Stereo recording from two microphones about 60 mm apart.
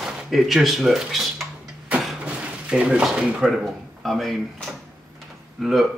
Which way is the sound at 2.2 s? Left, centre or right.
Centre.